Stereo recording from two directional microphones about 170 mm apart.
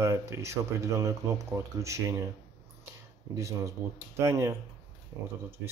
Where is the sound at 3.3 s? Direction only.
20° right (ahead or behind).